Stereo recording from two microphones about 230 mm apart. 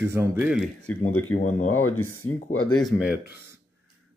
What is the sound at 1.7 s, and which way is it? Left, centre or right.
Speech, left.